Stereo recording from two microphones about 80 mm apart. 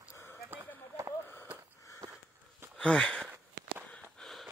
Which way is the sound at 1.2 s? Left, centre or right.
Left.